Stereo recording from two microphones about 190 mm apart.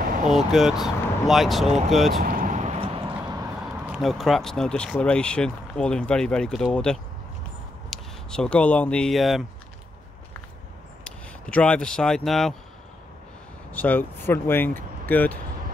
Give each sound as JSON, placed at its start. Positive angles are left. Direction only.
{"t": 0.3, "sound": "speech", "side_deg": 0}
{"t": 2.2, "sound": "vehicle", "side_deg": -45}
{"t": 3.9, "sound": "speech", "side_deg": 0}
{"t": 11.1, "sound": "speech", "side_deg": 5}
{"t": 13.7, "sound": "speech", "side_deg": 10}